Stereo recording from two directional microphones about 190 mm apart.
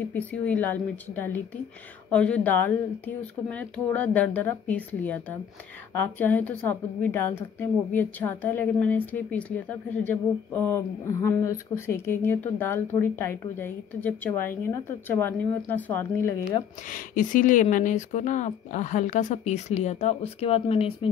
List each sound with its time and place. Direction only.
0.1 s a woman's voice: 10° left (ahead or behind)
16.9 s speech: 45° left (ahead or behind)